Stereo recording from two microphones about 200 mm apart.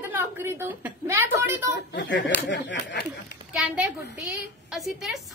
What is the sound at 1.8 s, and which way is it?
Speech, 60° left (ahead or behind).